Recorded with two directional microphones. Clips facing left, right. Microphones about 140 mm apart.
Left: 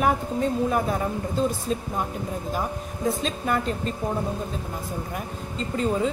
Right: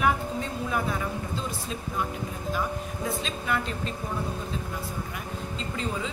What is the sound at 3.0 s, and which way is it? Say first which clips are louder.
Speech: left 6 dB; 40° left (ahead or behind).